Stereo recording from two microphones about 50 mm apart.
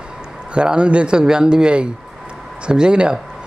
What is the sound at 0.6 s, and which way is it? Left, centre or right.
Speech, centre.